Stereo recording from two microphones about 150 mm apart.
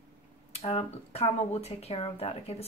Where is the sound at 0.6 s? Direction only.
45° left (ahead or behind).